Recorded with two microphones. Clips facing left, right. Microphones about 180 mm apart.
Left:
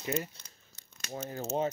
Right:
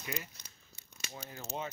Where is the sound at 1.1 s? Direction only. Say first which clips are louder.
Left 9 dB; 45° left (ahead or behind).